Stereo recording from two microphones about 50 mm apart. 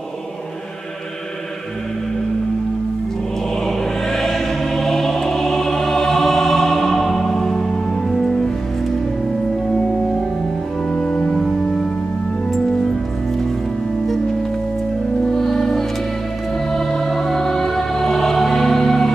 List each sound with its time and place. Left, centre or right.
3.6 s choir: centre
11.0 s music: left
15.3 s music: centre